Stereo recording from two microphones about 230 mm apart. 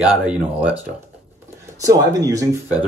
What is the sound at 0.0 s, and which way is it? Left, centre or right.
Speech, centre.